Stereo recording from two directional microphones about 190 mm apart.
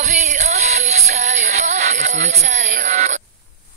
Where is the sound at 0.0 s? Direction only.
40° right (ahead or behind).